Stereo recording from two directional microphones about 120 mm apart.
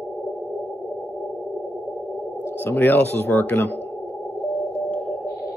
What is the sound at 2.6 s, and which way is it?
Speech, 15° left (ahead or behind).